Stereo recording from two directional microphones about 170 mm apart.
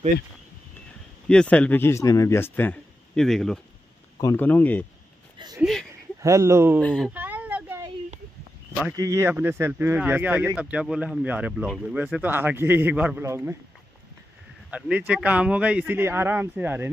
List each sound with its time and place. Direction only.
1.3 s speech: 5° left (ahead or behind)
4.2 s speech: 15° left (ahead or behind)
5.6 s a sound: centre (ahead or behind)
6.2 s speech: 15° right (ahead or behind)
6.8 s speech: 5° left (ahead or behind)
7.2 s a sound: 10° right (ahead or behind)
8.9 s speech: 20° right (ahead or behind)
14.7 s speech: 5° right (ahead or behind)